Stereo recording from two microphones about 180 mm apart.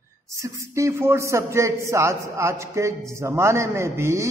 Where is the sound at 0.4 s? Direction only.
15° right (ahead or behind).